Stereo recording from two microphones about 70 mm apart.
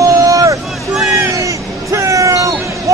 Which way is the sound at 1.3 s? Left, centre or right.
Right.